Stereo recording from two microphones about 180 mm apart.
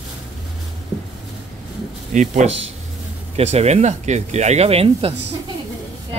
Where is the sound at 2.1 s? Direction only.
45° right (ahead or behind).